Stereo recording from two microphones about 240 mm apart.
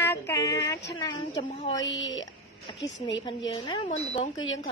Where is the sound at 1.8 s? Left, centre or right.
Left.